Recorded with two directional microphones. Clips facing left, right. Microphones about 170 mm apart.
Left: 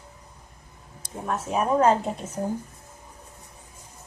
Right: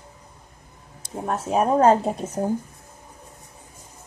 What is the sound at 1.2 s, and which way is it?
Speech, 35° right (ahead or behind).